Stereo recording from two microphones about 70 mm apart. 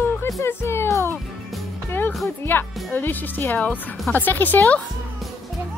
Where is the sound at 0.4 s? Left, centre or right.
Left.